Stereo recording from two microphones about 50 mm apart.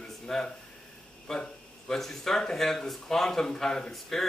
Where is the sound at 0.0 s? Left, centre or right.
Centre.